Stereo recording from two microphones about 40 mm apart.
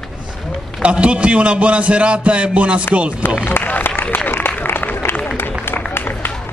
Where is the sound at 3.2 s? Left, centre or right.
Left.